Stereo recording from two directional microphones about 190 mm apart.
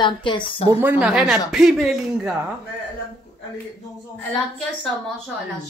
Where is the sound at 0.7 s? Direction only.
10° right (ahead or behind).